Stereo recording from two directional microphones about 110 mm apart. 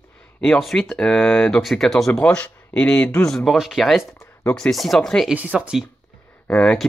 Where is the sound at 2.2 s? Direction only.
15° left (ahead or behind).